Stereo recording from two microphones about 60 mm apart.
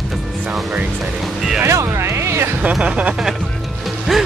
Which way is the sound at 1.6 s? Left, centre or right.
Right.